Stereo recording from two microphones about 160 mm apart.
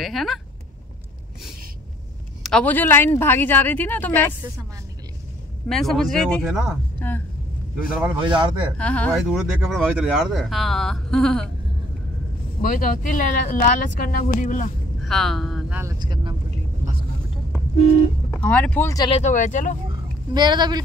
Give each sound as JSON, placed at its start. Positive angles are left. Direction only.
{"t": 0.0, "sound": "speech", "side_deg": 0}
{"t": 2.4, "sound": "speech", "side_deg": 5}
{"t": 5.7, "sound": "speech", "side_deg": 0}
{"t": 7.0, "sound": "speech", "side_deg": 15}
{"t": 8.2, "sound": "speech", "side_deg": -30}
{"t": 8.7, "sound": "speech", "side_deg": 10}
{"t": 12.6, "sound": "speech", "side_deg": 60}
{"t": 15.0, "sound": "speech", "side_deg": 0}
{"t": 15.7, "sound": "speech", "side_deg": -20}
{"t": 18.4, "sound": "speech", "side_deg": 5}
{"t": 19.0, "sound": "speech", "side_deg": 45}
{"t": 20.3, "sound": "speech", "side_deg": -25}